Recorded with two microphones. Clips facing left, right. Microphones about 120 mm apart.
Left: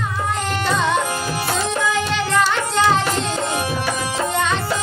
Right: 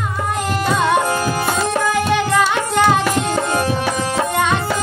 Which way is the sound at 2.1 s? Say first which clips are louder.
Right 3 dB; 15° right (ahead or behind).